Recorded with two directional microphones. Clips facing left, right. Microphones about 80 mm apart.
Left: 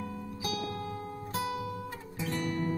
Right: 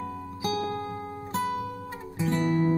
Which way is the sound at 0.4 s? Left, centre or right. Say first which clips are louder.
Right 7 dB; right.